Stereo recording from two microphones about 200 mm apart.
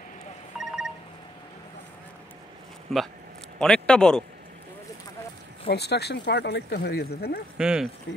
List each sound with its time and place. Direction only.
0.6 s telephone dialing: 5° right (ahead or behind)
2.9 s speech: centre (ahead or behind)
5.7 s speech: 55° left (ahead or behind)
7.5 s speech: 5° right (ahead or behind)